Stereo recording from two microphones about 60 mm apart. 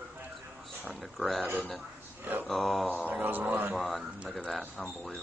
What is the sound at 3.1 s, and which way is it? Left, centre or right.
Speech, right.